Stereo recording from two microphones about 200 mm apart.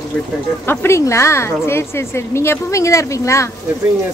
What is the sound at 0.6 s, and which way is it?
A woman's voice, 10° left (ahead or behind).